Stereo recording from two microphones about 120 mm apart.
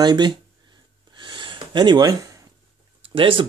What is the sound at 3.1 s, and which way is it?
Speech, 45° right (ahead or behind).